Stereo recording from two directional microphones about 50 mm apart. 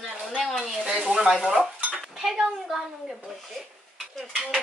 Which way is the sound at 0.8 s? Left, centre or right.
Centre.